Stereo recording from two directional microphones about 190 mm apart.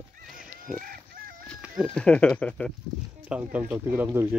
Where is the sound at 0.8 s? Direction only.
50° right (ahead or behind).